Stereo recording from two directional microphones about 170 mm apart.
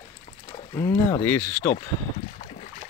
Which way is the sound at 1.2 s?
10° left (ahead or behind).